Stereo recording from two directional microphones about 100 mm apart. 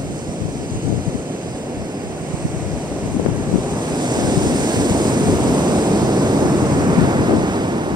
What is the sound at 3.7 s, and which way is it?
Waves, 45° right (ahead or behind).